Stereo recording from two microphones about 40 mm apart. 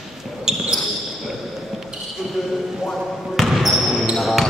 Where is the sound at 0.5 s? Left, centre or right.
Centre.